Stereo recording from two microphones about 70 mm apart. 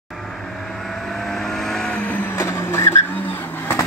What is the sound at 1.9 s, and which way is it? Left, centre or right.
Vehicle, centre.